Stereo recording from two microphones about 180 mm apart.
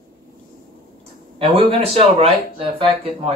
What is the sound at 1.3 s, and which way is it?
Speech, 30° right (ahead or behind).